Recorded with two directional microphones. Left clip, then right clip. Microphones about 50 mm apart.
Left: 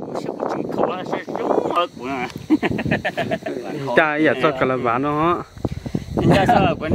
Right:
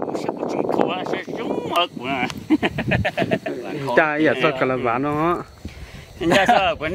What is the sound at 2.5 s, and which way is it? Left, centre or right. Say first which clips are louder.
Speech: left 2 dB; centre.